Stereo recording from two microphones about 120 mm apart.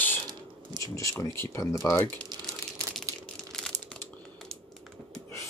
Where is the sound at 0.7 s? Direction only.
40° right (ahead or behind).